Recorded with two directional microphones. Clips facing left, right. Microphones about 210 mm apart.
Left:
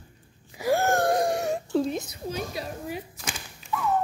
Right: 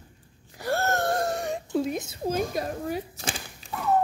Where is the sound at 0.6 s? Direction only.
10° left (ahead or behind).